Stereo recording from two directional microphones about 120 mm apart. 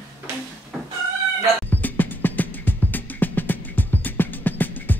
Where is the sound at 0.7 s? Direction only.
Centre (ahead or behind).